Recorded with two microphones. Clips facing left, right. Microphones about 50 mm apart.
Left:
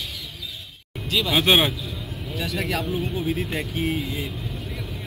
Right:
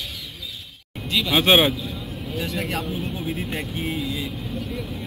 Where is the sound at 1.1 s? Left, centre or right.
Centre.